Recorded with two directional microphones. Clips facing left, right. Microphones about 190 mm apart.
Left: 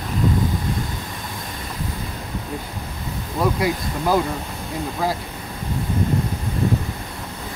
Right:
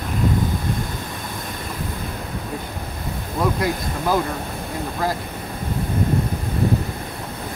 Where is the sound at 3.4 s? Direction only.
10° left (ahead or behind).